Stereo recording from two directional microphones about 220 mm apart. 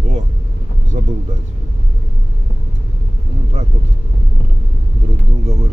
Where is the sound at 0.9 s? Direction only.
30° right (ahead or behind).